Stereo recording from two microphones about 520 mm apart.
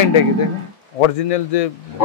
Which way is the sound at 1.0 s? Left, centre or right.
Left.